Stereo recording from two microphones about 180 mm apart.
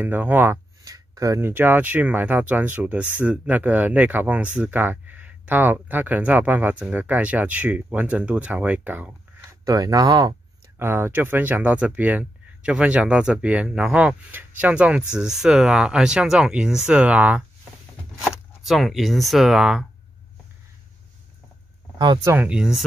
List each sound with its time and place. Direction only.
0.0 s speech: 10° right (ahead or behind)
21.9 s speech: 25° right (ahead or behind)
22.3 s speech: 5° right (ahead or behind)